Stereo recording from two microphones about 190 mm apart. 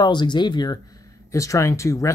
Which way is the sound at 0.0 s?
25° left (ahead or behind).